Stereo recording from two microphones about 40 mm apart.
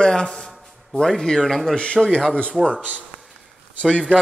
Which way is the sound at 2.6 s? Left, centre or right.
Left.